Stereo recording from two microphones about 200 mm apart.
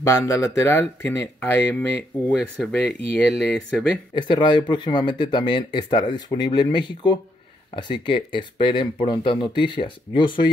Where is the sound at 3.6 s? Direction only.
5° left (ahead or behind).